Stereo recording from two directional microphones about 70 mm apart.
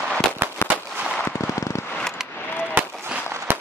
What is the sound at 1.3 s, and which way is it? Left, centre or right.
Fireworks, left.